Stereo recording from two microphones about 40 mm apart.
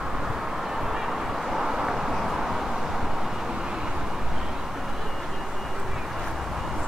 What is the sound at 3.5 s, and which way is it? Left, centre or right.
Vehicle, centre.